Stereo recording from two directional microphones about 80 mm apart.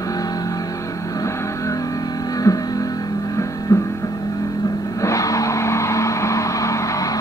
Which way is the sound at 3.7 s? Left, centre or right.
Left.